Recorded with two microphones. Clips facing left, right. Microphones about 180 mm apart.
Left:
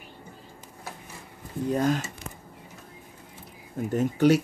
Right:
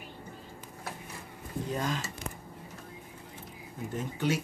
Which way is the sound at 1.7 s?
45° left (ahead or behind).